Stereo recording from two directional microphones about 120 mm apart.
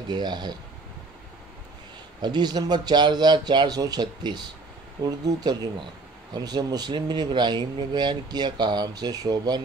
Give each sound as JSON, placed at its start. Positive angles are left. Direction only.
{"t": 0.1, "sound": "speech", "side_deg": -35}
{"t": 2.2, "sound": "speech", "side_deg": -35}